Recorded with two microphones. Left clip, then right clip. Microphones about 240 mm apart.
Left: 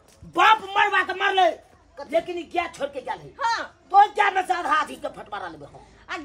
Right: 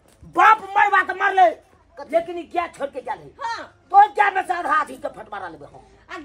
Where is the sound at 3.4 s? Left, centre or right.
Centre.